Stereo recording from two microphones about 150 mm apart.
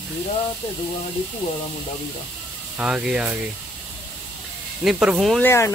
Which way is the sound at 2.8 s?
5° right (ahead or behind).